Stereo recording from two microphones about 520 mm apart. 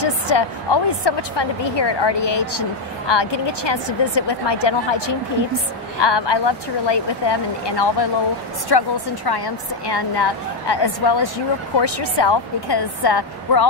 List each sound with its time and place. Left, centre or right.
0.0 s a woman's voice: left